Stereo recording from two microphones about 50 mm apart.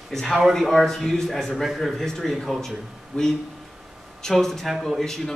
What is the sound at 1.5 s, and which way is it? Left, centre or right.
Speech, centre.